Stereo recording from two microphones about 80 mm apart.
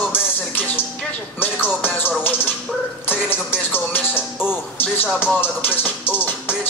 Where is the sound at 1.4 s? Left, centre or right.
Left.